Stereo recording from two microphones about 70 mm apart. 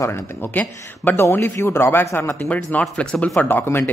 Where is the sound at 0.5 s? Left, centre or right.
Left.